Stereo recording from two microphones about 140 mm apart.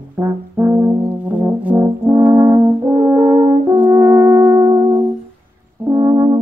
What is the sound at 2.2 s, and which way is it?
French horn, 15° right (ahead or behind).